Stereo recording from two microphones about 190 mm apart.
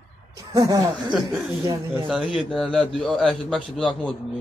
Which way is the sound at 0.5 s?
15° right (ahead or behind).